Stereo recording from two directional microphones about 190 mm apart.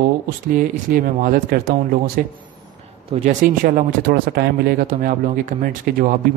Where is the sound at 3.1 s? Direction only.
30° right (ahead or behind).